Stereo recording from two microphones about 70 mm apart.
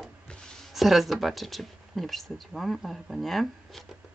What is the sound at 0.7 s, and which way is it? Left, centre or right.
Speech, centre.